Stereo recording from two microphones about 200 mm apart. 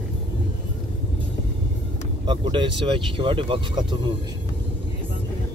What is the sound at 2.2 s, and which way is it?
Speech, 25° right (ahead or behind).